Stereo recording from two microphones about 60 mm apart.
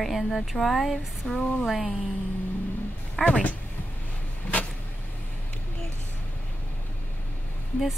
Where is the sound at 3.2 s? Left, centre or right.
Left.